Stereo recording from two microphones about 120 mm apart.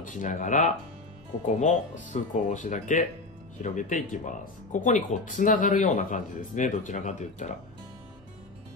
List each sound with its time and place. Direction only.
0.0 s speech: 90° left
1.4 s speech: 75° left (ahead or behind)
2.5 s speech: 90° left